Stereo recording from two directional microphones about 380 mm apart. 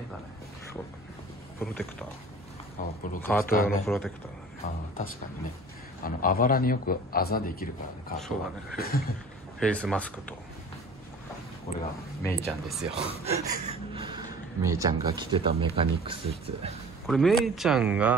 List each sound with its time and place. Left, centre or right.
1.6 s speech: centre
2.8 s a man's voice: left
3.2 s speech: centre
3.4 s a man's voice: left
3.8 s speech: centre
6.0 s a man's voice: left
9.6 s speech: centre
12.2 s speech: centre
13.2 s speech: centre
17.0 s speech: centre